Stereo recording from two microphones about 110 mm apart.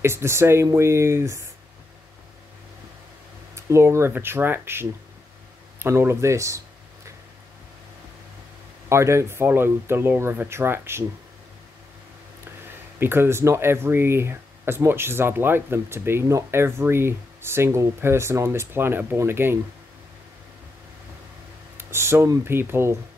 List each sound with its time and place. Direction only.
0.0 s speech: 25° right (ahead or behind)
3.5 s speech: 25° right (ahead or behind)
8.8 s speech: 25° right (ahead or behind)
13.0 s speech: 20° right (ahead or behind)
21.7 s speech: 25° right (ahead or behind)